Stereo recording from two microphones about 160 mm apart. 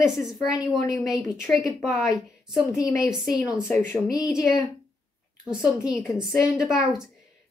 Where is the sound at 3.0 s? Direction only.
5° right (ahead or behind).